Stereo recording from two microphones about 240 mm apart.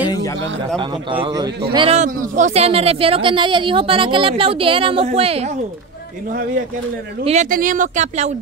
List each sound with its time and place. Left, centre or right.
0.7 s speech: right
7.2 s speech: right